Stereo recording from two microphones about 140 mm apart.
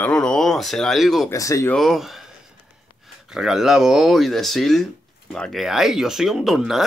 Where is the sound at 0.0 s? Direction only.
5° left (ahead or behind).